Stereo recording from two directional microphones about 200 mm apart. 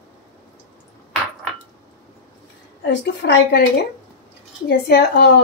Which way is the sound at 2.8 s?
60° left (ahead or behind).